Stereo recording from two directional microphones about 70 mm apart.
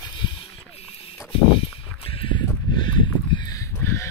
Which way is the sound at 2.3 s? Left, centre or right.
Left.